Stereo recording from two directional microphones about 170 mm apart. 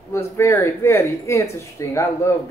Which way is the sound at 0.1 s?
15° left (ahead or behind).